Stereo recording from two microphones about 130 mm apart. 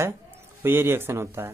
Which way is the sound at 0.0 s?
20° right (ahead or behind).